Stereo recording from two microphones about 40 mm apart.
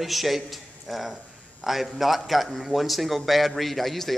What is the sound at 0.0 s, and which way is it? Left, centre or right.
A man's voice, centre.